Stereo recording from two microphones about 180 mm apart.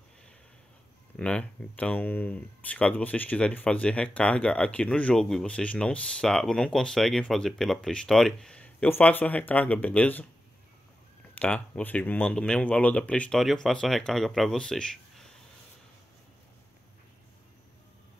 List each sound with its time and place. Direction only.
1.1 s speech: 5° left (ahead or behind)
11.3 s speech: 10° left (ahead or behind)